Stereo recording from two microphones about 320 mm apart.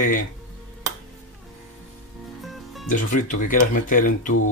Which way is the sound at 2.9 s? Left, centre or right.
Left.